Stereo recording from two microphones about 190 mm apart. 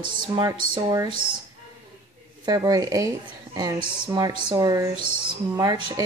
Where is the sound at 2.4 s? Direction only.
20° right (ahead or behind).